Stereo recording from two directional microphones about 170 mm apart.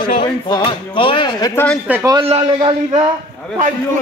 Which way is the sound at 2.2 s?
35° right (ahead or behind).